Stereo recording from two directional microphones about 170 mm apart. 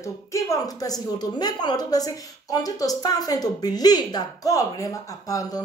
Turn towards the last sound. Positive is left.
turn(degrees=20)  # may be behind; listen again after turning